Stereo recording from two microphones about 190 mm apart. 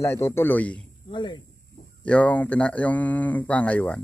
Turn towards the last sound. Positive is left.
turn(degrees=5)  # may be behind; listen again after turning